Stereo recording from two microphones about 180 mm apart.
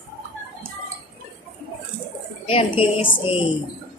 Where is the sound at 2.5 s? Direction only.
30° left (ahead or behind).